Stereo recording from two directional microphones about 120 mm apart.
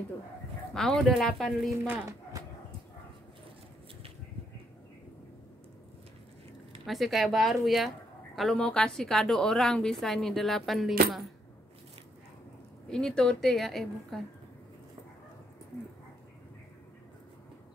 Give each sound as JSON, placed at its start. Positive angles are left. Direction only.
{"t": 0.7, "sound": "a woman's voice", "side_deg": 5}
{"t": 1.9, "sound": "speech", "side_deg": -25}
{"t": 6.9, "sound": "a woman's voice", "side_deg": 0}
{"t": 12.9, "sound": "a woman's voice", "side_deg": 5}